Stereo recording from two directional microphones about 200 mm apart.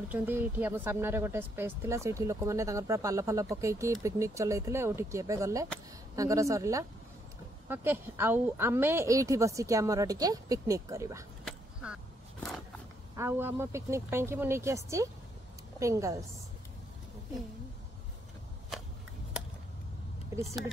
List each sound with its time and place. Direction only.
0.1 s speech: 10° right (ahead or behind)
11.4 s quack: 5° right (ahead or behind)
13.1 s speech: 10° right (ahead or behind)